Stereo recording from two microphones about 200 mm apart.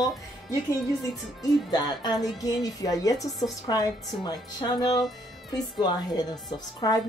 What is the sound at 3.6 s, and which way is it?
A woman's voice, 20° left (ahead or behind).